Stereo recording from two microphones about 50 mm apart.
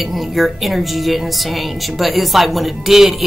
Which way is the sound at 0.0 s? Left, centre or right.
Centre.